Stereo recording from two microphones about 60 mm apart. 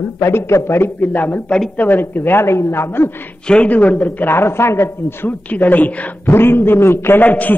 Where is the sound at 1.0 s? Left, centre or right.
Left.